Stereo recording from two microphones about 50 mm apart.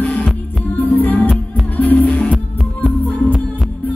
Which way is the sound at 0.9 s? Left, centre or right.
Left.